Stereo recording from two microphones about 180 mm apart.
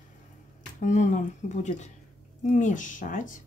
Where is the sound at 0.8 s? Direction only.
40° left (ahead or behind).